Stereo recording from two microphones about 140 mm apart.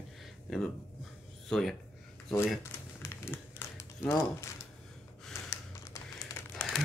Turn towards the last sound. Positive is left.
turn(degrees=0)  # may be behind; listen again after turning